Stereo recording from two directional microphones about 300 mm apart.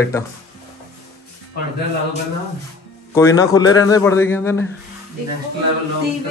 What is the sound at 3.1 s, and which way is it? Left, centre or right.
A man's voice, centre.